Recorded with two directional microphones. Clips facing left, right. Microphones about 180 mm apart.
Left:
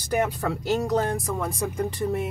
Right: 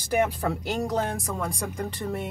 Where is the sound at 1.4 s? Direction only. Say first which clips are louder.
Left 3 dB; 5° left (ahead or behind).